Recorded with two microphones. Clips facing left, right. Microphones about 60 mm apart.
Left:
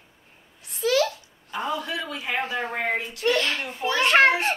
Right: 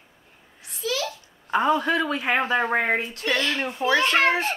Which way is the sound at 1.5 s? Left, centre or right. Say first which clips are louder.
Right 8 dB; right.